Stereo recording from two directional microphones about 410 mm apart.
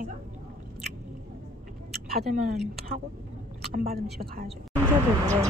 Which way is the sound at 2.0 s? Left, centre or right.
Right.